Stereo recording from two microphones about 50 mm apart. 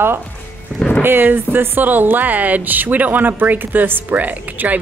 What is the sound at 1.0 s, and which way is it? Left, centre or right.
Speech, right.